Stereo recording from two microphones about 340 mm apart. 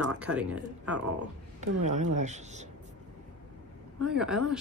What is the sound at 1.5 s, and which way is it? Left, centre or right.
Speech, right.